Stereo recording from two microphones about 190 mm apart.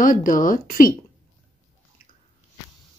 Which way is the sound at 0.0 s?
45° left (ahead or behind).